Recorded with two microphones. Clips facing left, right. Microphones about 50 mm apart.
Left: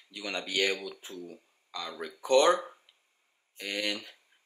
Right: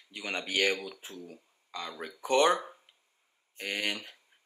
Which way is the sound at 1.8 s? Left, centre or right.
Right.